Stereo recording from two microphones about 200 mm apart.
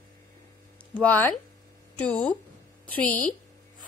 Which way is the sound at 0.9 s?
10° left (ahead or behind).